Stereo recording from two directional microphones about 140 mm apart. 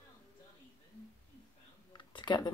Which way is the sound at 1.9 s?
35° left (ahead or behind).